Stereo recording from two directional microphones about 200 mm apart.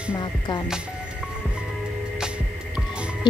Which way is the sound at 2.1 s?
5° right (ahead or behind).